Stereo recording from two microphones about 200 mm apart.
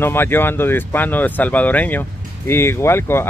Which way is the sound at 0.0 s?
10° left (ahead or behind).